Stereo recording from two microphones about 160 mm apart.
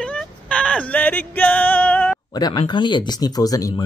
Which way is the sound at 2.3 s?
25° left (ahead or behind).